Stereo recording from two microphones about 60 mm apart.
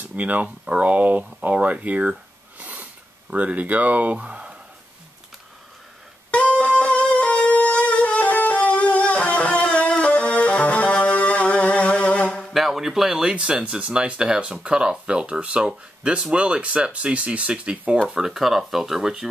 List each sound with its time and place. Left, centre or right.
0.0 s speech: right
2.6 s a sound: right
6.3 s music: left
12.5 s speech: centre